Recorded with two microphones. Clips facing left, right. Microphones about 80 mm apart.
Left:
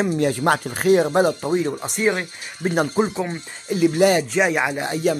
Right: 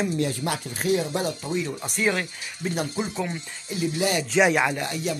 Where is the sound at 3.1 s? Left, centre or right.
Left.